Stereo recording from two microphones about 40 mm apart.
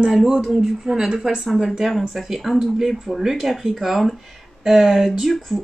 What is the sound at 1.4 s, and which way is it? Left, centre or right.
A woman's voice, centre.